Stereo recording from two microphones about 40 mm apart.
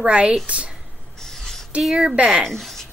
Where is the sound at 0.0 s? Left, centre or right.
Right.